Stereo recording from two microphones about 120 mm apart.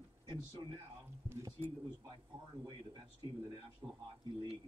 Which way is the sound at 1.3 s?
20° right (ahead or behind).